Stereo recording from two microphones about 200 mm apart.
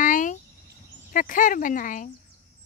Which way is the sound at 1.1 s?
40° left (ahead or behind).